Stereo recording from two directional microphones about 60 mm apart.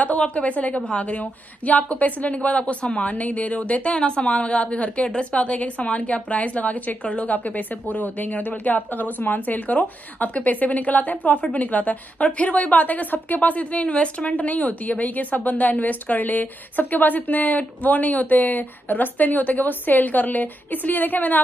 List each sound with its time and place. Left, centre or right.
0.0 s a woman's voice: left